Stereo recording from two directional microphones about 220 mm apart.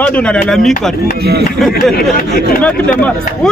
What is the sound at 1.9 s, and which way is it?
Speech, 40° left (ahead or behind).